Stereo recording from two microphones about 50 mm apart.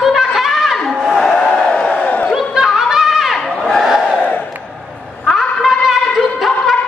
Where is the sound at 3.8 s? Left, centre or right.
Centre.